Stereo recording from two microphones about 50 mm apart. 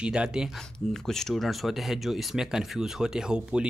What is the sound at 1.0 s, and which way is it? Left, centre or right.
Speech, centre.